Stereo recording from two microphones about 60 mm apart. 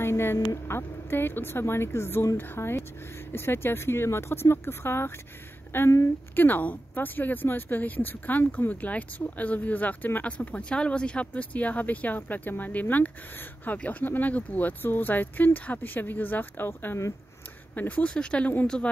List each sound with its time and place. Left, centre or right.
0.0 s a sound: left
0.7 s speech: left
17.7 s speech: left
18.1 s speech: centre